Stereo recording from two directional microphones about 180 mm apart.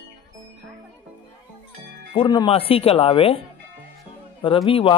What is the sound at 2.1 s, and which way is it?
A man's voice, 25° left (ahead or behind).